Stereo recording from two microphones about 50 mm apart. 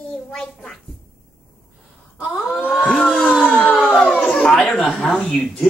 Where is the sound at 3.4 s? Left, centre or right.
Left.